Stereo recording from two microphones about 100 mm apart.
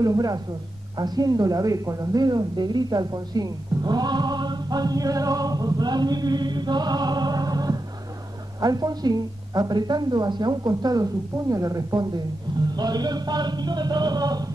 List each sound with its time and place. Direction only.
0.0 s a woman's voice: 35° right (ahead or behind)